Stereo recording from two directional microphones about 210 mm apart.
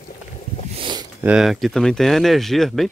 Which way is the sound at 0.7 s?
20° right (ahead or behind).